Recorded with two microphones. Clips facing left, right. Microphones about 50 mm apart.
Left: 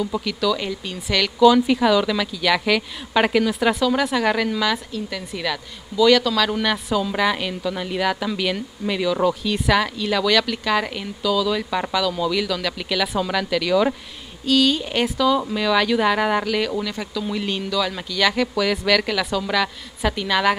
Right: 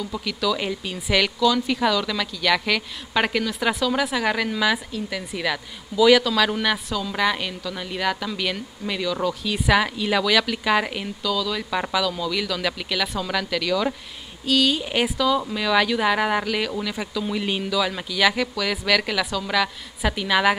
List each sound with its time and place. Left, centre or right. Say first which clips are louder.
0.2 s a woman's voice: left 2 dB; centre
1.4 s a woman's voice: left 6 dB; centre
11.2 s a woman's voice: left 5 dB; centre